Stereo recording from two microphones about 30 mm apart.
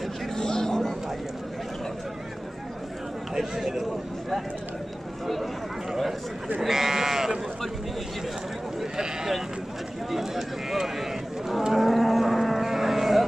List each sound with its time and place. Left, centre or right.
0.4 s a sound: centre
3.3 s speech: centre
5.2 s speech: centre
6.7 s speech: centre
8.9 s speech: right
10.1 s speech: centre
11.7 s cattle: centre